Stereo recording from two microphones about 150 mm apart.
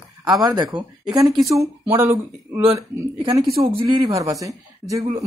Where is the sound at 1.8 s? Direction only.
15° right (ahead or behind).